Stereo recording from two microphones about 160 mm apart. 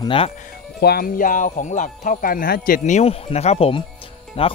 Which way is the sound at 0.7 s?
80° left.